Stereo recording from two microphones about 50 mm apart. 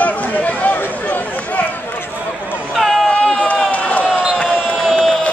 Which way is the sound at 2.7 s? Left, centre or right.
Centre.